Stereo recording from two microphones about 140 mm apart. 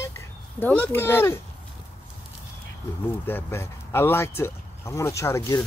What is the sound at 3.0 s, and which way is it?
Speech, 15° left (ahead or behind).